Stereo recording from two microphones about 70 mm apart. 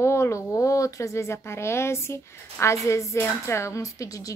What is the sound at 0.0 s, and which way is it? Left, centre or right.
A woman's voice, left.